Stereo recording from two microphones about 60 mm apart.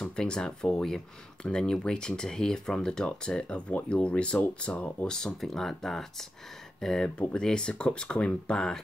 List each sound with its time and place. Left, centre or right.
0.0 s speech: centre
5.1 s speech: centre